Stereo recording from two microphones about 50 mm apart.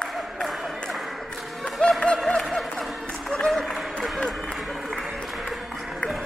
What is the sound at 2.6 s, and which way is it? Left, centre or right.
Music, centre.